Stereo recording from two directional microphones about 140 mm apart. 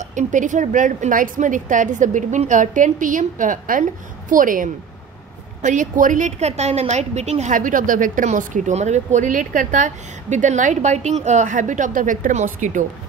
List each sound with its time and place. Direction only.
0.1 s a woman's voice: 65° right (ahead or behind)
5.6 s a woman's voice: 65° right (ahead or behind)